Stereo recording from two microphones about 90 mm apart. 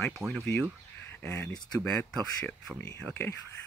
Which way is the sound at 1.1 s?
20° left (ahead or behind).